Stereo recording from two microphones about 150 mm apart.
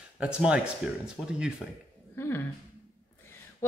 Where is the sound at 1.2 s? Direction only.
5° left (ahead or behind).